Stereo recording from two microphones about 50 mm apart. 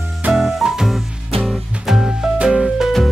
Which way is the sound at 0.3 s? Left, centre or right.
Centre.